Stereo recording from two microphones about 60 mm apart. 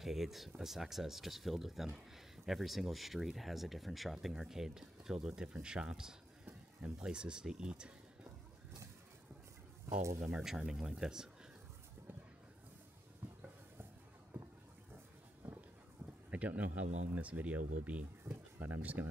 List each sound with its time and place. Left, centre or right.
0.0 s speech: centre
10.4 s speech: centre
14.3 s boat: right
15.4 s a sound: right
16.3 s speech: right
18.2 s a sound: right